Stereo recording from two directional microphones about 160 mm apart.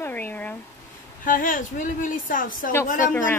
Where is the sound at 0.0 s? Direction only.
10° left (ahead or behind).